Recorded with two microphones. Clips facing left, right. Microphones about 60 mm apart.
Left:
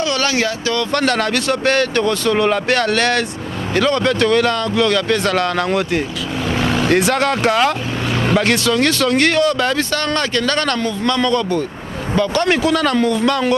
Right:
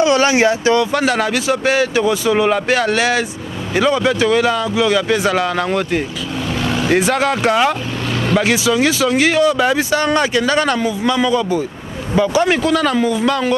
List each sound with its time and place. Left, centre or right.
0.0 s speech: centre
0.9 s speech: centre